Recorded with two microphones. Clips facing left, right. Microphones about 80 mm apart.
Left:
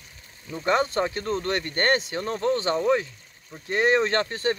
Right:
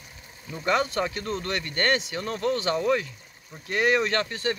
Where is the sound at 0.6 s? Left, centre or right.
Left.